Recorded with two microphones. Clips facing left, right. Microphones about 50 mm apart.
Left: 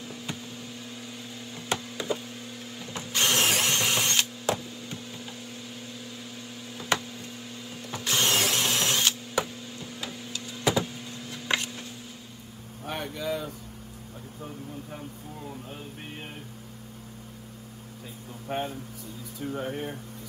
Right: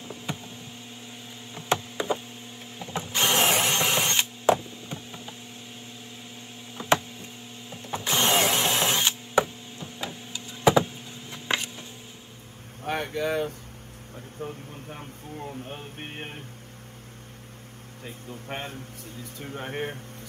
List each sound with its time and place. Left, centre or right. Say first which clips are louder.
1.5 s a sound: right 5 dB; right
2.8 s drill: right 2 dB; right
6.8 s a sound: right 5 dB; right
7.8 s drill: right 2 dB; right
12.8 s vehicle: right 4 dB; right
14.4 s a man's voice: right 2 dB; right
18.0 s speech: right 1 dB; right